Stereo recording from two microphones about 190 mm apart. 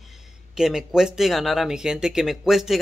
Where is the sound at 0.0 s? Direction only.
Centre (ahead or behind).